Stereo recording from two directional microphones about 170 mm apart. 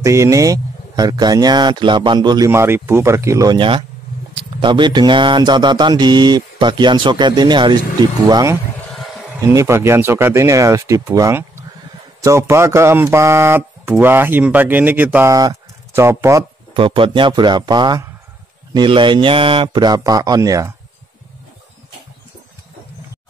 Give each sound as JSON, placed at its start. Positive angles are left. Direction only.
{"t": 0.0, "sound": "speech", "side_deg": -15}
{"t": 16.7, "sound": "speech", "side_deg": -30}